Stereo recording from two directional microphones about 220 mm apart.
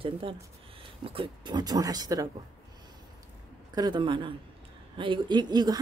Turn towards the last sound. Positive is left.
turn(degrees=-20)  # may be behind; listen again after turning